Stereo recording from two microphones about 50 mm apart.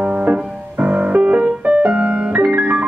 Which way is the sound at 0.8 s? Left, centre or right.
Right.